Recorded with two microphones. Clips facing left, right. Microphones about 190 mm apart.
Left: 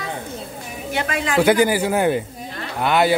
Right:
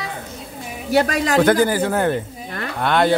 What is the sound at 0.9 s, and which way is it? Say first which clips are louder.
Speech: right 5 dB; 40° right (ahead or behind).